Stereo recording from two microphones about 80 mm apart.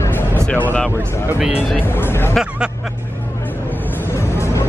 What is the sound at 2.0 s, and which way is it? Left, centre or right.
Speech, left.